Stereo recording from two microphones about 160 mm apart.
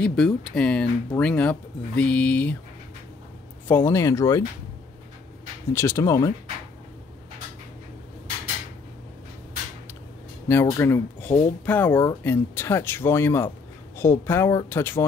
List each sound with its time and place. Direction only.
0.0 s speech: 5° left (ahead or behind)
3.6 s speech: 15° left (ahead or behind)
5.7 s speech: 15° left (ahead or behind)
10.5 s speech: 15° left (ahead or behind)
11.9 s speech: 25° left (ahead or behind)
12.2 s speech: 15° left (ahead or behind)